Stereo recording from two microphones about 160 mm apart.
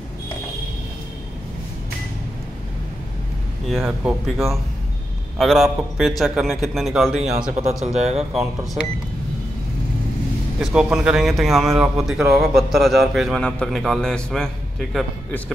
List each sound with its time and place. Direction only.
3.6 s a man's voice: centre (ahead or behind)
7.5 s speech: 45° right (ahead or behind)
8.2 s a man's voice: 5° right (ahead or behind)
10.6 s a man's voice: 5° right (ahead or behind)